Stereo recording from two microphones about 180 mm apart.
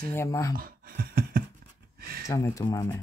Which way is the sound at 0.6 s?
55° right (ahead or behind).